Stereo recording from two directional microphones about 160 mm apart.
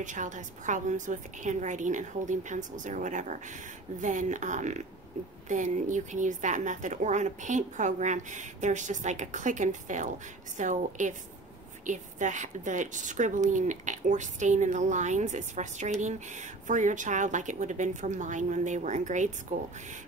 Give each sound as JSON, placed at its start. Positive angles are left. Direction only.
{"t": 0.0, "sound": "a woman's voice", "side_deg": -50}